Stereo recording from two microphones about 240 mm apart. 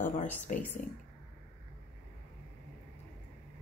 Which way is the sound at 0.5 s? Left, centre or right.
Left.